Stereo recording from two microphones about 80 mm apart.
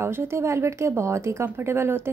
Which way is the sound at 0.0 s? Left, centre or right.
Right.